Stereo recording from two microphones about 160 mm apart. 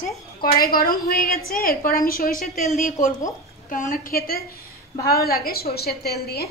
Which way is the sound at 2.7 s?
50° left (ahead or behind).